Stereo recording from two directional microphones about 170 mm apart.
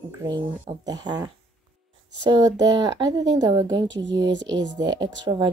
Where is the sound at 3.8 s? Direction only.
90° right.